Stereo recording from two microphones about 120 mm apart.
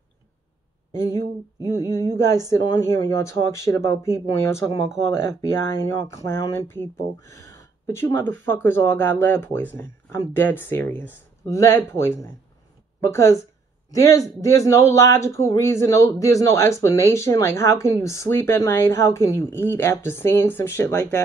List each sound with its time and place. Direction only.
1.8 s speech: 25° left (ahead or behind)